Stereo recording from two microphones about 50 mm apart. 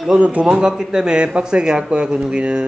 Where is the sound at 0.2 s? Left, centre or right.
Right.